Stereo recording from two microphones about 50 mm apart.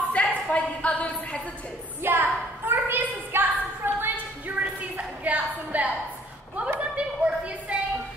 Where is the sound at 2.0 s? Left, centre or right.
Right.